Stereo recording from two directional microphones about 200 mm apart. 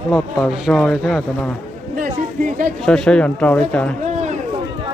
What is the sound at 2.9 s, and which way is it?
Speech, 5° left (ahead or behind).